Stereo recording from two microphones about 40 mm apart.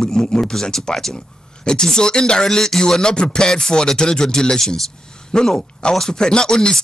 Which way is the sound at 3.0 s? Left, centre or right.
Centre.